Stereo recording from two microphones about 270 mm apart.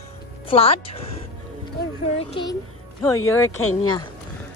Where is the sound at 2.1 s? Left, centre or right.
Centre.